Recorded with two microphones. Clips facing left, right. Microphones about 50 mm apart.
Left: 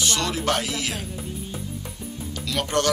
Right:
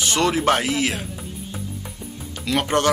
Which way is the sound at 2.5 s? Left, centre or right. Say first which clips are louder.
Right 4 dB; right.